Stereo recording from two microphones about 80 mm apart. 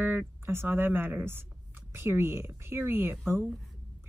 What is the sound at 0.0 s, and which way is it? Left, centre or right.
Speech, right.